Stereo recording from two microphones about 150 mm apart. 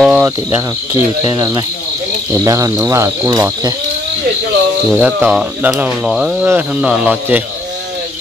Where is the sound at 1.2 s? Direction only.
25° right (ahead or behind).